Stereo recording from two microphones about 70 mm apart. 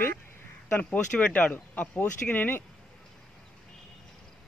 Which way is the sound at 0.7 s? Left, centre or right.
Left.